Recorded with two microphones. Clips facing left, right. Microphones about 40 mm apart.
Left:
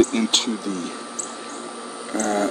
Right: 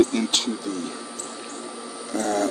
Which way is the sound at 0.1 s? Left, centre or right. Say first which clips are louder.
Left 2 dB; left.